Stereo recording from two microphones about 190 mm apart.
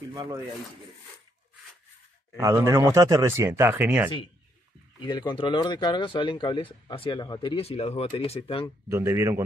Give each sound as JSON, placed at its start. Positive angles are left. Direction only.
{"t": 0.1, "sound": "speech", "side_deg": -20}
{"t": 2.3, "sound": "speech", "side_deg": -15}
{"t": 5.0, "sound": "speech", "side_deg": 25}
{"t": 8.8, "sound": "speech", "side_deg": -15}